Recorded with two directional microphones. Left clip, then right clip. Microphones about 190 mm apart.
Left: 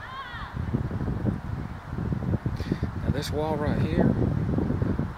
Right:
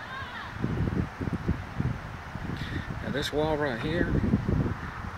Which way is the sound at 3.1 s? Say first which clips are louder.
Right 1 dB; 5° left (ahead or behind).